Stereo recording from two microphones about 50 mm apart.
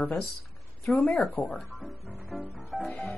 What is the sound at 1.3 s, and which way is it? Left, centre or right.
Speech, left.